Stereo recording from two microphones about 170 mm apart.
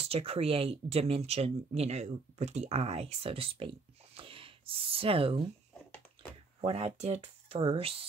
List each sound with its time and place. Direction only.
0.0 s speech: 35° right (ahead or behind)
6.6 s speech: 40° right (ahead or behind)